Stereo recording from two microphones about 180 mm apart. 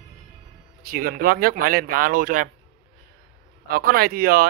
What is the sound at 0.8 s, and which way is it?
Speech, 55° right (ahead or behind).